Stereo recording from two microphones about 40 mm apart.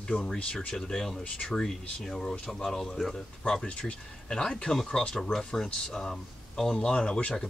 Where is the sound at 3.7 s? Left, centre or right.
Left.